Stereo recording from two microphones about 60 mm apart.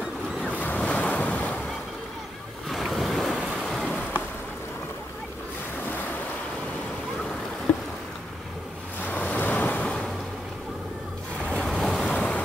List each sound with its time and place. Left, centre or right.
0.5 s waves: left
2.7 s waves: centre
3.6 s a sound: centre
7.7 s boat: left
9.0 s waves: left
9.8 s vehicle: centre
11.6 s waves: centre
12.1 s waves: centre